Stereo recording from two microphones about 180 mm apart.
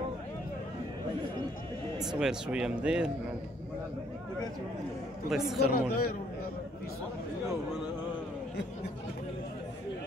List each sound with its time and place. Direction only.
2.0 s speech: 5° right (ahead or behind)
5.3 s speech: centre (ahead or behind)
5.8 s speech: 60° left (ahead or behind)